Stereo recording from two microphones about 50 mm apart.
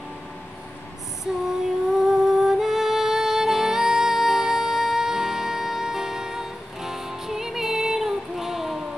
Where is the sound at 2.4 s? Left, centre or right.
Centre.